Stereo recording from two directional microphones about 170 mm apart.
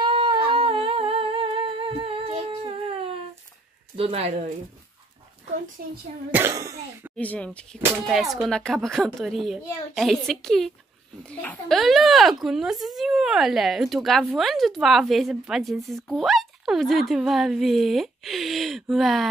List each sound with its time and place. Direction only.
0.0 s humming: 30° right (ahead or behind)
3.9 s speech: 35° right (ahead or behind)
6.3 s a child's voice: 15° right (ahead or behind)
7.2 s speech: 5° left (ahead or behind)